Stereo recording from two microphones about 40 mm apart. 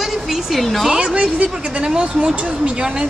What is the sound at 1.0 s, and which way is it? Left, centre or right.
Speech, right.